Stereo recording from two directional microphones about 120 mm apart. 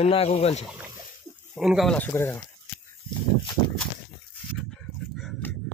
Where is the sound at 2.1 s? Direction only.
20° left (ahead or behind).